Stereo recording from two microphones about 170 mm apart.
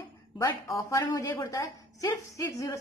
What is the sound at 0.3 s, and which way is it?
A woman's voice, 25° left (ahead or behind).